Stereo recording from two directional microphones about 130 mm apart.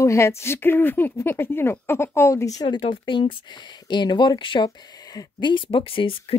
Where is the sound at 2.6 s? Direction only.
40° left (ahead or behind).